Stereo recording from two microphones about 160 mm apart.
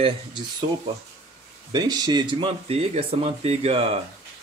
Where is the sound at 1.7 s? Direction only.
25° right (ahead or behind); by 4.0 s 40° right (ahead or behind).